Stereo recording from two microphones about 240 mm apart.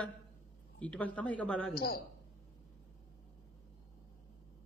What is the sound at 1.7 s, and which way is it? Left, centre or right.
Speech, left.